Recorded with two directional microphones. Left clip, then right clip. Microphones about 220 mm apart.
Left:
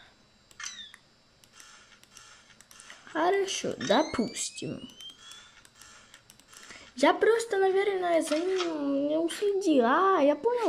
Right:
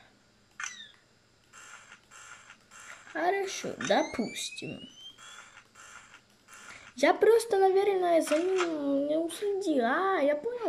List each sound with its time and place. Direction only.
3.1 s speech: 5° left (ahead or behind)
7.0 s speech: centre (ahead or behind)